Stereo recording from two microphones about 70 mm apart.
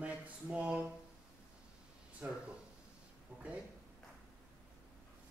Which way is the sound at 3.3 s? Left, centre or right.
Centre.